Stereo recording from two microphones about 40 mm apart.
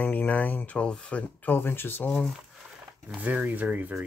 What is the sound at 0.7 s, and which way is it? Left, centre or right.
Speech, left.